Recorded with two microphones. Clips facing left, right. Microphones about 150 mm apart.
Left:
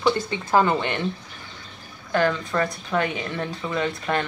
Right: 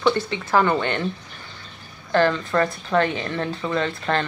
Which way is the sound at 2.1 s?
10° left (ahead or behind).